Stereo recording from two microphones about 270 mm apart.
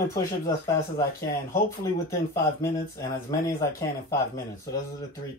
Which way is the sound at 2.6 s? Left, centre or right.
Left.